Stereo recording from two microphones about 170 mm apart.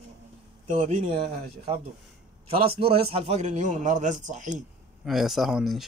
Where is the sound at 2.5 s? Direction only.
35° right (ahead or behind).